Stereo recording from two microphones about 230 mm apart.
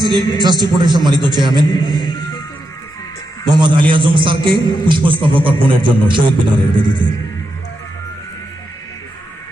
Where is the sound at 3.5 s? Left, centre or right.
Centre.